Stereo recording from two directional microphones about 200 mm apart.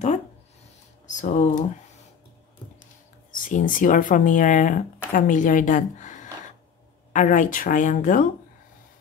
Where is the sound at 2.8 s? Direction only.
40° left (ahead or behind).